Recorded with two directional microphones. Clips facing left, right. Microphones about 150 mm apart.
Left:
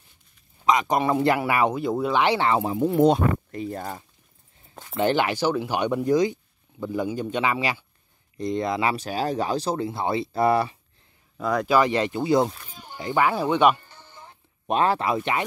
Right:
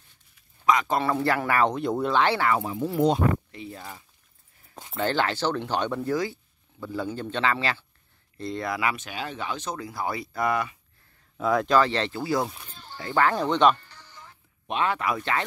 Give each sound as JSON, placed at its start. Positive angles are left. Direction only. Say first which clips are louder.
{"t": 0.7, "sound": "speech", "louder": "left 2 dB", "side_deg": 20}
{"t": 2.1, "sound": "speech", "louder": "left 2 dB", "side_deg": 15}
{"t": 2.4, "sound": "speech", "louder": "left 3 dB", "side_deg": 30}
{"t": 3.0, "sound": "speech", "louder": "left 2 dB", "side_deg": 50}
{"t": 4.9, "sound": "speech", "louder": "left 4 dB", "side_deg": 15}
{"t": 11.3, "sound": "speech", "louder": "right 1 dB", "side_deg": 0}
{"t": 11.7, "sound": "speech", "louder": "left 5 dB", "side_deg": 10}
{"t": 12.6, "sound": "music", "louder": "left 4 dB", "side_deg": 10}
{"t": 14.7, "sound": "speech", "louder": "left 4 dB", "side_deg": 35}